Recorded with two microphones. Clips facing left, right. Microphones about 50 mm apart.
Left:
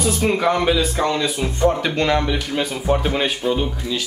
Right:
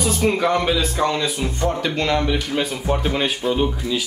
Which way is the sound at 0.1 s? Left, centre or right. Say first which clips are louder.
Even; centre.